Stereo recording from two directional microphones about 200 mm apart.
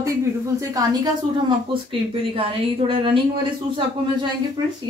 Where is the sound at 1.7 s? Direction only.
25° right (ahead or behind).